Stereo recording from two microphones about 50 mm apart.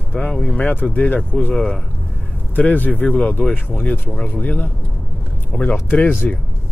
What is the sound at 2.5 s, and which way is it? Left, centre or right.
Speech, left.